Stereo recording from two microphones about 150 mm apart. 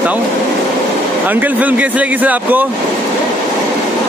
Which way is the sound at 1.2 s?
10° right (ahead or behind).